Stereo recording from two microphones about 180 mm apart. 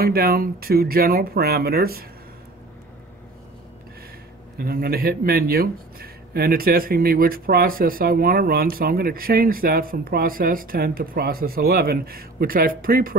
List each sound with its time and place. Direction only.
0.0 s speech: 55° right (ahead or behind)
4.6 s speech: 55° right (ahead or behind)